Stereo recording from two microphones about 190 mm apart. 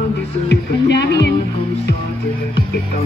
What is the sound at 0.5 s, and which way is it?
Music, 65° left (ahead or behind).